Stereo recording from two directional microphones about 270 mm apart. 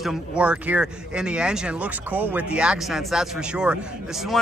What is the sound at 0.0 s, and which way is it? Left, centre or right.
Speech, centre.